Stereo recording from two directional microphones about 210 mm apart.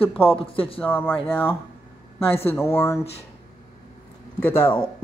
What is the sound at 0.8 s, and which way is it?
Speech, 10° left (ahead or behind).